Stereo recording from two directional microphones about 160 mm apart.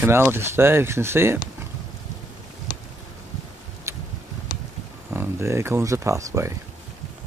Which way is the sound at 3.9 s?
15° right (ahead or behind).